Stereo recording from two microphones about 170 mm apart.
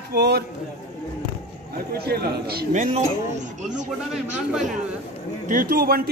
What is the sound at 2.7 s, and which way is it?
Speech, 45° right (ahead or behind).